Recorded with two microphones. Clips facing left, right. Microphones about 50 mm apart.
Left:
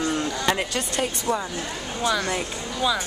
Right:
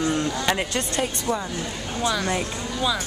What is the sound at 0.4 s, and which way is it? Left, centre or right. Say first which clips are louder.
Speech: even; centre.